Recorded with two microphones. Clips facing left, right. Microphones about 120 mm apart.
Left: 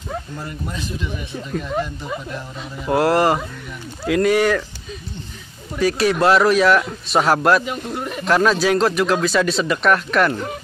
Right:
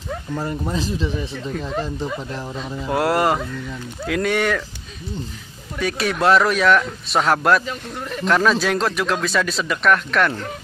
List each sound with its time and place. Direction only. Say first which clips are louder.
0.4 s speech: right 5 dB; 35° right (ahead or behind)
2.9 s speech: left 3 dB; centre (ahead or behind)
5.8 s speech: left 4 dB; centre (ahead or behind)